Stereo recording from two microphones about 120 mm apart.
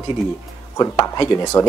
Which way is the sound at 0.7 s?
30° left (ahead or behind).